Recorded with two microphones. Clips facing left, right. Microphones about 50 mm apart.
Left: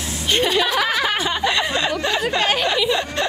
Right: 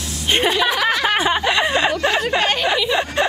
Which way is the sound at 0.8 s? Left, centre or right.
Centre.